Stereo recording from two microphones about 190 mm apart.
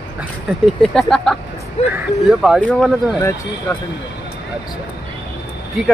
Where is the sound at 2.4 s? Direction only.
Centre (ahead or behind).